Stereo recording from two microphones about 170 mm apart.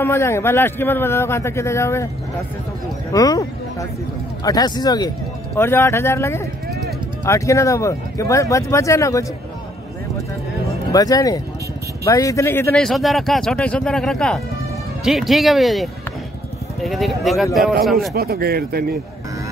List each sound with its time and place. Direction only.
0.0 s a man's voice: 15° left (ahead or behind)
3.1 s speech: 20° left (ahead or behind)
4.5 s a man's voice: 25° left (ahead or behind)
10.9 s a man's voice: 20° left (ahead or behind)
12.8 s speech: centre (ahead or behind)
18.1 s speech: 65° right (ahead or behind)